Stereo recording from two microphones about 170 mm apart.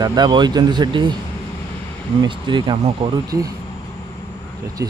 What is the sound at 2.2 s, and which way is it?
Speech, 30° right (ahead or behind).